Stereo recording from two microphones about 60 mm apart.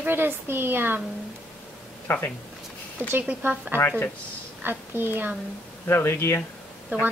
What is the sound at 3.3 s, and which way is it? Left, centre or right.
Speech, right.